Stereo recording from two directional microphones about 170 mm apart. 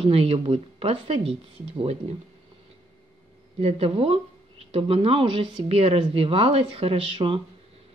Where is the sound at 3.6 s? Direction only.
35° right (ahead or behind).